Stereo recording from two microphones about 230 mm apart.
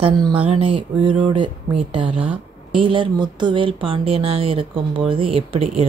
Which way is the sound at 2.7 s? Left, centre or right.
Right.